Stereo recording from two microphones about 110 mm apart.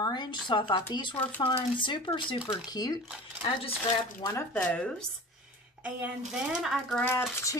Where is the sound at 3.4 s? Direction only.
50° left (ahead or behind).